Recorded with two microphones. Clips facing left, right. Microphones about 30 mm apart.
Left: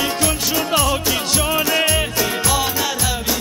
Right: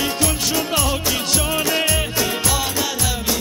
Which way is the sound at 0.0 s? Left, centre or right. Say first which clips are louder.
Left 1 dB; centre.